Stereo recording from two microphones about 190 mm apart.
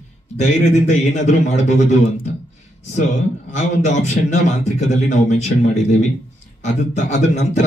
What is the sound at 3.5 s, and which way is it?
A man's voice, 35° left (ahead or behind).